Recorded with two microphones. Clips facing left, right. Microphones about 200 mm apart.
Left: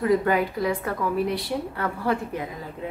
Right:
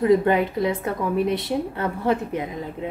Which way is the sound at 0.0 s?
25° right (ahead or behind).